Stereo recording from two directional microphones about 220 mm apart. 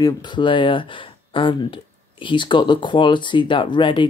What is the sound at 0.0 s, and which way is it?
Speech, 20° left (ahead or behind).